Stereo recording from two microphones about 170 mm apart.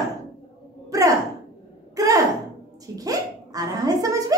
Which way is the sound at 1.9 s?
20° right (ahead or behind).